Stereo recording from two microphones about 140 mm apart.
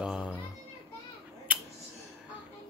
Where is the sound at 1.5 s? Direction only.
10° right (ahead or behind).